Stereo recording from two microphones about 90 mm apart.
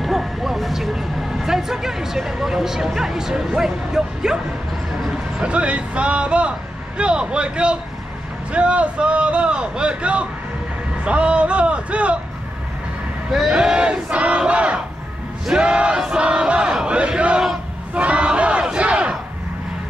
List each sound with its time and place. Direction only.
0.0 s a man's voice: 5° right (ahead or behind)
13.3 s a man's voice: 5° right (ahead or behind)
15.4 s battle cry: 10° right (ahead or behind)